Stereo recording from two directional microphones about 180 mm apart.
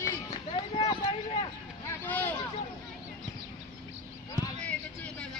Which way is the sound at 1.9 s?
10° left (ahead or behind).